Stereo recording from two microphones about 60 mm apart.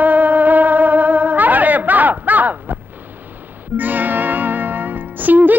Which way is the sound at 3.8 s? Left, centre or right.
Right.